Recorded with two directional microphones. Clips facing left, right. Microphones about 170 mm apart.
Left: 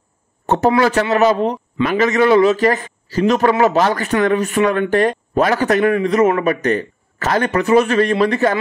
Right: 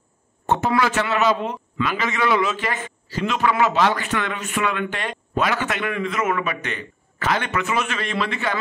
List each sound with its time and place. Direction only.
0.7 s a man's voice: 40° left (ahead or behind)